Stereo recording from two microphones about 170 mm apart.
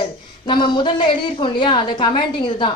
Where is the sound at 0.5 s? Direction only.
25° left (ahead or behind).